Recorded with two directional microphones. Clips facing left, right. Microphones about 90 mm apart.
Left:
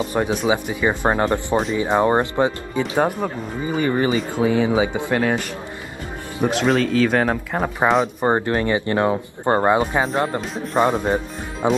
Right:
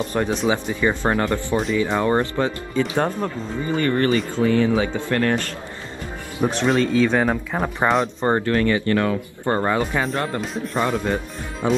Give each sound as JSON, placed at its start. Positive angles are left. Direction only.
{"t": 0.0, "sound": "speech", "side_deg": 10}
{"t": 8.2, "sound": "speech", "side_deg": 20}